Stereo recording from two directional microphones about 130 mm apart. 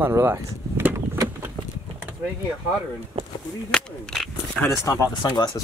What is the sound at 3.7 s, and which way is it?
Speech, 5° left (ahead or behind).